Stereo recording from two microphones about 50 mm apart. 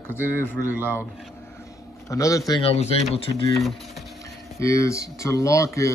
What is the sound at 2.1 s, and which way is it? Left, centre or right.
Speech, left.